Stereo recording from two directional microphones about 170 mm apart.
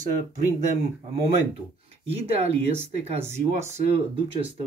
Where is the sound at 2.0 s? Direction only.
35° right (ahead or behind).